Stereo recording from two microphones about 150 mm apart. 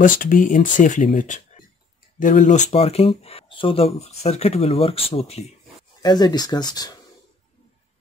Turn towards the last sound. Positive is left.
turn(degrees=25)  # may be behind; listen again after turning